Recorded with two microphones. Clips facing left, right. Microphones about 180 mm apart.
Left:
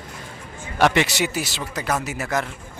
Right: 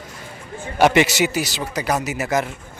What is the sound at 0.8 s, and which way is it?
Speech, 5° right (ahead or behind).